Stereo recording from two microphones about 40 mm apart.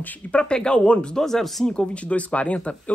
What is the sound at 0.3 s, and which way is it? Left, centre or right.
Speech, left.